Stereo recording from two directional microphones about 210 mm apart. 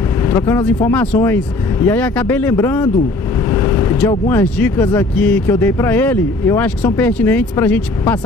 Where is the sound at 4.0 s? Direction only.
15° left (ahead or behind).